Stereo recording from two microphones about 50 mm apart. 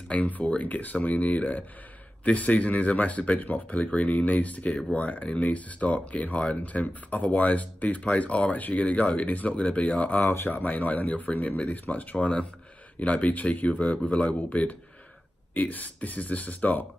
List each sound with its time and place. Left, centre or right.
0.1 s speech: left
10.3 s speech: left
10.6 s speech: left